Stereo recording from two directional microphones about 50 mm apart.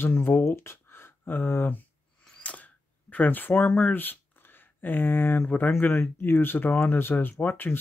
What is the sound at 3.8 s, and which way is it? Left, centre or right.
Speech, left.